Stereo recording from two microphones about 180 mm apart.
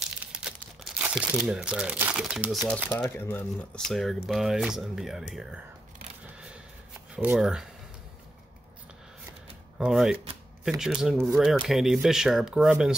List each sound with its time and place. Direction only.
0.2 s speech: 5° right (ahead or behind)
2.9 s speech: 10° left (ahead or behind)
6.2 s a sound: 5° right (ahead or behind)
7.2 s speech: 5° right (ahead or behind)
9.8 s speech: centre (ahead or behind)